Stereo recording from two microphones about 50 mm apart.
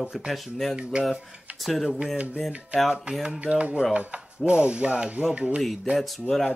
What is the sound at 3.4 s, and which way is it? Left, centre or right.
Speech, right.